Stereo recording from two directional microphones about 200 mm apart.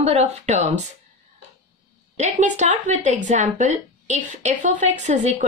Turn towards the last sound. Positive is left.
turn(degrees=-35)  # may be behind; listen again after turning